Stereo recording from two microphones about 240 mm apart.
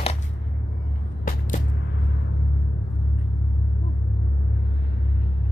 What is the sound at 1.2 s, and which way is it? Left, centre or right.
Music, left.